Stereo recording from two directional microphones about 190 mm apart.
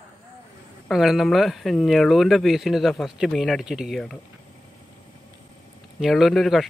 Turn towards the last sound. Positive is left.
turn(degrees=0)  # may be behind; listen again after turning